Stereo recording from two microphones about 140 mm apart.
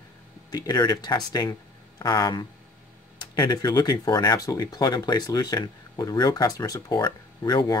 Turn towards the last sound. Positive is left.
turn(degrees=30)  # may be behind; listen again after turning